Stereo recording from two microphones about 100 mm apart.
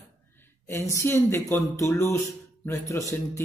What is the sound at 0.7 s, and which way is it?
A man's voice, 30° left (ahead or behind).